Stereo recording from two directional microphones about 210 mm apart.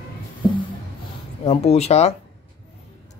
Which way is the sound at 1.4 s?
30° left (ahead or behind).